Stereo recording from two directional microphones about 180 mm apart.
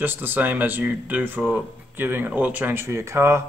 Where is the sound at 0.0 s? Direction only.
10° right (ahead or behind).